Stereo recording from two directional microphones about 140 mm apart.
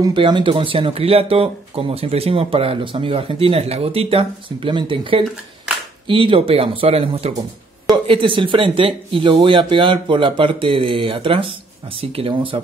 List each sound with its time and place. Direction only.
0.0 s speech: 35° right (ahead or behind)